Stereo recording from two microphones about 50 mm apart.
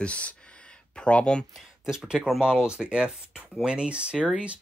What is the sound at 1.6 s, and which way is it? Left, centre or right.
Speech, centre.